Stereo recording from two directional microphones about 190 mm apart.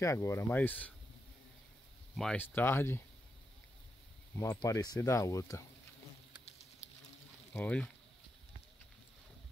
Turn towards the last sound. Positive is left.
turn(degrees=5)  # may be behind; listen again after turning